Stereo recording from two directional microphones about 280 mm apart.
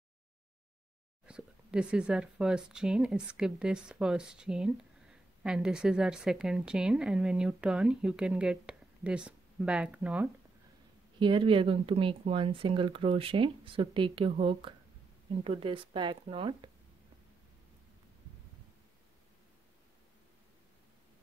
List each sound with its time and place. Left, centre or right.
1.2 s speech: centre
11.1 s speech: centre